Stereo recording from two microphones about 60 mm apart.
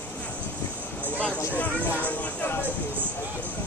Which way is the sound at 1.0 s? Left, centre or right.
Left.